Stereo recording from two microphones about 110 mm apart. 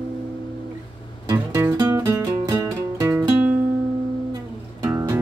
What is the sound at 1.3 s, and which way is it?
Music, 25° right (ahead or behind).